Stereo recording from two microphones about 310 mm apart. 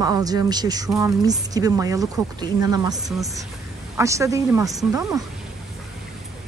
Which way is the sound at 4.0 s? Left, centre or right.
Centre.